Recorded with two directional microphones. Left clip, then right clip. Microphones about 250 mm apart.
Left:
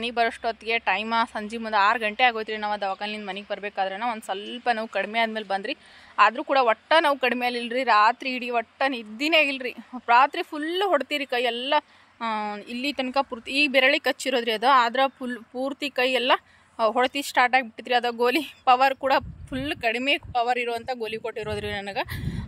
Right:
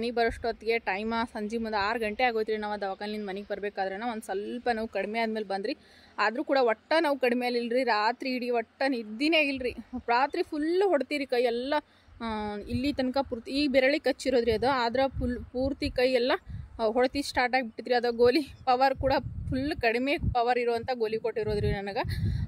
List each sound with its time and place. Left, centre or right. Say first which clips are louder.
0.0 s speech: left 3 dB; centre